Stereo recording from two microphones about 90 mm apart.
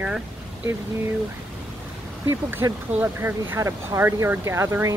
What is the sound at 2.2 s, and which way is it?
Speech, 30° right (ahead or behind).